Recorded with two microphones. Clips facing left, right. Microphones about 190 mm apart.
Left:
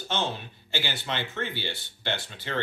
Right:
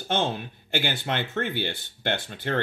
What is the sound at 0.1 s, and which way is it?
Speech, 55° right (ahead or behind).